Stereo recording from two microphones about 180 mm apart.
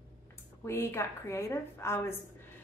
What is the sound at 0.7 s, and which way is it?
A woman's voice, 15° left (ahead or behind).